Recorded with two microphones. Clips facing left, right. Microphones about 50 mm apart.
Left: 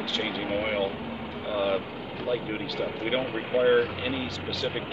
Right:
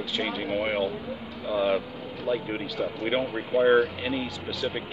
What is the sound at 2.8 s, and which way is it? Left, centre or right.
Speech, centre.